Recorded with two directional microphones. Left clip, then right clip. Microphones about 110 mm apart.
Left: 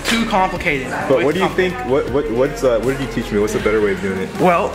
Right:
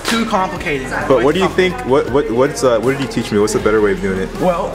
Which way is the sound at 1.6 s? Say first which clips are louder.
Right 3 dB; 20° right (ahead or behind).